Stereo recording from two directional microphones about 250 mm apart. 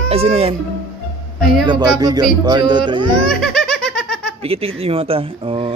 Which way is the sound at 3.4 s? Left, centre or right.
Centre.